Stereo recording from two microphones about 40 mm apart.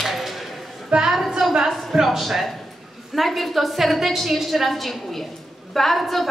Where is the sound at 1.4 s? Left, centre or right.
Centre.